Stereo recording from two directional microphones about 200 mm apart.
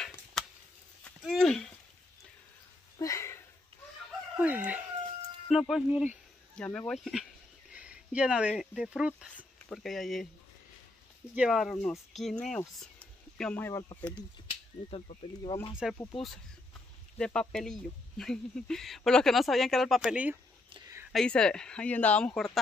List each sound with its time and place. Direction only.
0.0 s a sound: centre (ahead or behind)
3.0 s a sound: 15° left (ahead or behind)
4.4 s crowing: 5° right (ahead or behind)
5.5 s speech: centre (ahead or behind)
7.7 s a sound: 5° right (ahead or behind)
8.5 s speech: centre (ahead or behind)
11.3 s speech: centre (ahead or behind)
14.9 s speech: 30° left (ahead or behind)
15.7 s speech: 5° right (ahead or behind)
17.2 s speech: 5° left (ahead or behind)